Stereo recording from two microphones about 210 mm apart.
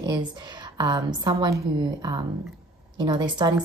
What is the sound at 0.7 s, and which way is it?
A woman's voice, 20° right (ahead or behind).